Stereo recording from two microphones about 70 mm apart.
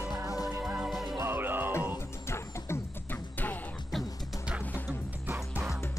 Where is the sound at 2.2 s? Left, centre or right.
Left.